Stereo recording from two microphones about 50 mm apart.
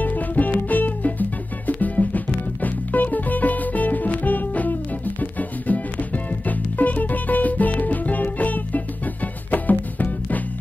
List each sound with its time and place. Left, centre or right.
0.0 s music: left